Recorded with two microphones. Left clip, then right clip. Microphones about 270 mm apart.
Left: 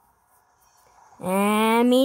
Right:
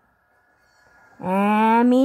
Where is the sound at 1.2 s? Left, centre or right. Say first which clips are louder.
Right 2 dB; left.